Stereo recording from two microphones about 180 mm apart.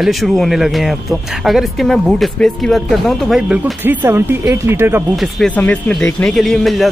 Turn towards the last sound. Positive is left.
turn(degrees=0)  # may be behind; listen again after turning